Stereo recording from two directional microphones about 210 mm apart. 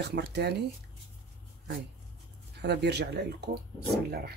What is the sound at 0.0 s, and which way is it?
Speech, 55° right (ahead or behind).